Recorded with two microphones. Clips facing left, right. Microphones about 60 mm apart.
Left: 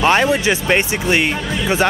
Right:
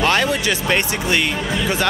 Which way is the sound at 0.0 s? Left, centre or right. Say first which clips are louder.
Left 4 dB; left.